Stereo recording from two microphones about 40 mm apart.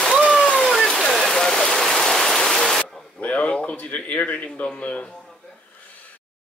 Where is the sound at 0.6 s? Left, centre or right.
Centre.